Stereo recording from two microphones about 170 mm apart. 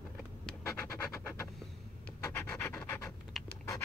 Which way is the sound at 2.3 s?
15° left (ahead or behind).